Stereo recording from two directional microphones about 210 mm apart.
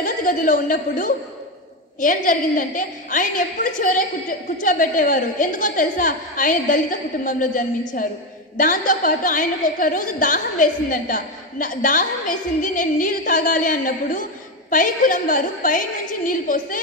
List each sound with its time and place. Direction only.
0.0 s a woman's voice: 40° left (ahead or behind)